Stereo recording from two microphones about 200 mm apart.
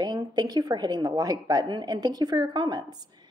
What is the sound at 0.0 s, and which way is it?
A woman's voice, 20° right (ahead or behind).